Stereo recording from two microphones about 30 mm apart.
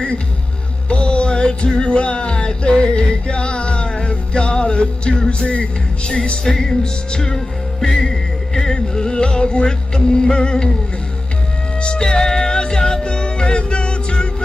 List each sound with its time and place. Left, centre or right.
0.8 s music: left
12.0 s music: left